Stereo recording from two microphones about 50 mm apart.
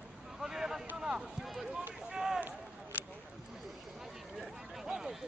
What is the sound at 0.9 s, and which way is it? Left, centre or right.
Speech, centre.